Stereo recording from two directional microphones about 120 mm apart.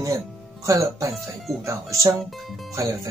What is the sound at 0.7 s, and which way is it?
Speech, 25° right (ahead or behind).